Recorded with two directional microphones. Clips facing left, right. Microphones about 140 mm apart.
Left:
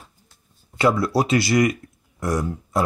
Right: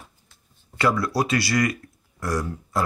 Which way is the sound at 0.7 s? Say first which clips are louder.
Left 3 dB; 25° left (ahead or behind).